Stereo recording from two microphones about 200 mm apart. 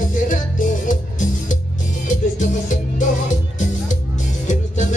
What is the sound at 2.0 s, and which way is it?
Music, 40° left (ahead or behind).